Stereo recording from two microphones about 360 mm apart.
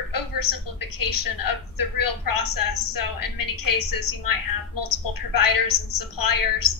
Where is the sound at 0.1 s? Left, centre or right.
Left.